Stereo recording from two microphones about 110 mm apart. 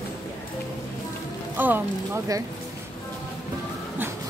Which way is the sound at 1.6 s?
15° right (ahead or behind).